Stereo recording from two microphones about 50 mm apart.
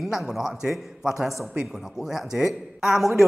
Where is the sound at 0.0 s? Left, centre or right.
Centre.